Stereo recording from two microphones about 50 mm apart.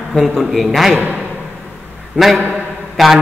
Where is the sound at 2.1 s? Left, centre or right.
Right.